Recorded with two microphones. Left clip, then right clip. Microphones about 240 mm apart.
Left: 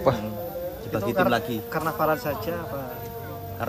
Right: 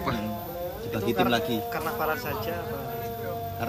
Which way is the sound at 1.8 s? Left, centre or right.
Left.